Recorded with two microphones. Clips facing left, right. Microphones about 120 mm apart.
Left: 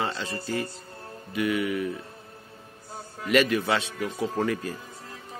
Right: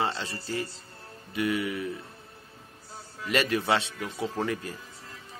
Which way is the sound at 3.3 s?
30° right (ahead or behind).